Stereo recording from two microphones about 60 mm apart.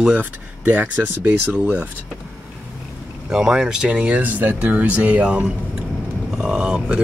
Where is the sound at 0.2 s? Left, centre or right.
Right.